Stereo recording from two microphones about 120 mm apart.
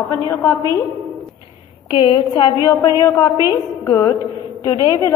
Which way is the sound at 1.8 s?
40° left (ahead or behind).